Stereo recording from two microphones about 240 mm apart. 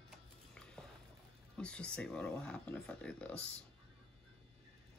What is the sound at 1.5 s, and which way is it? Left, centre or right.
Speech, centre.